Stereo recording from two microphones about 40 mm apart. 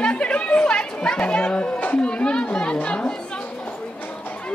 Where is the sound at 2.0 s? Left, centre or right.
Left.